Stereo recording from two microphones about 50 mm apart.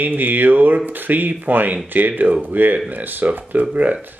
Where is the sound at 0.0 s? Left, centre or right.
Right.